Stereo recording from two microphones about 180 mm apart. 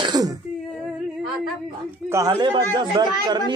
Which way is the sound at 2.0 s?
20° right (ahead or behind).